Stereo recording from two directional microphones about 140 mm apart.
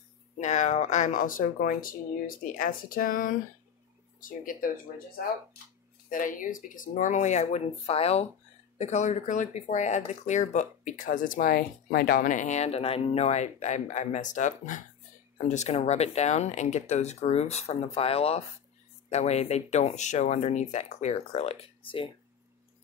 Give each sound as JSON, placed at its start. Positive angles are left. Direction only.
{"t": 0.4, "sound": "speech", "side_deg": 55}
{"t": 6.0, "sound": "speech", "side_deg": 75}